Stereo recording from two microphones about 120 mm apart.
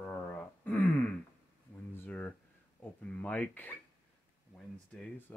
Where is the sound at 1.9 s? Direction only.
15° left (ahead or behind).